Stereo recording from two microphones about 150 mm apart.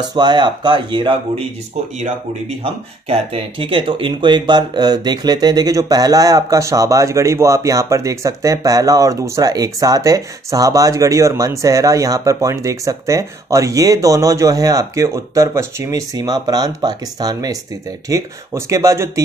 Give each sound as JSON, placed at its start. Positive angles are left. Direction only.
{"t": 0.1, "sound": "speech", "side_deg": -30}
{"t": 2.0, "sound": "speech", "side_deg": -45}